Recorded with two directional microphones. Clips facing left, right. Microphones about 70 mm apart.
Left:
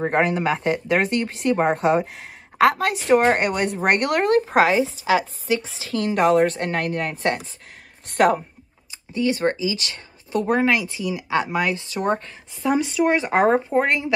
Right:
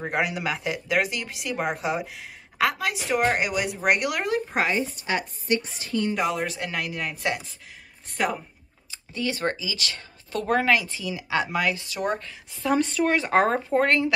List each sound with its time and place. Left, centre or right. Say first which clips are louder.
0.0 s speech: left 6 dB; left
1.9 s speech: left 8 dB; left
5.9 s speech: left 6 dB; left
8.1 s a woman's voice: left 9 dB; left
9.1 s speech: left 6 dB; left
12.6 s speech: left 3 dB; centre